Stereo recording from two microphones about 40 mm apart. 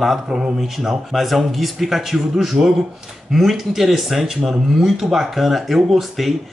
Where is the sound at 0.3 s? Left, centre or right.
Centre.